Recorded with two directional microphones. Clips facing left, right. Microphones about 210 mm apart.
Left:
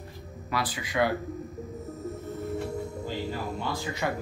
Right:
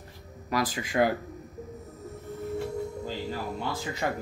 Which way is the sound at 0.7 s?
45° right (ahead or behind).